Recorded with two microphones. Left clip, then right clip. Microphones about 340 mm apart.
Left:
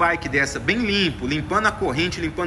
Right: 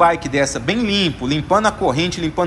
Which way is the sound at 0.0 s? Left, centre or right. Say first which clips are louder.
Right 5 dB; centre.